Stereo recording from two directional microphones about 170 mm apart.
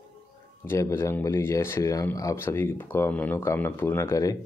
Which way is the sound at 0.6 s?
15° left (ahead or behind).